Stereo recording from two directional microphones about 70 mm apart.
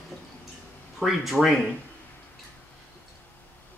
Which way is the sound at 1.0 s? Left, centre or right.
Centre.